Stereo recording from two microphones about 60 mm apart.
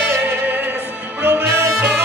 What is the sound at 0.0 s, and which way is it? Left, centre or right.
Music, right.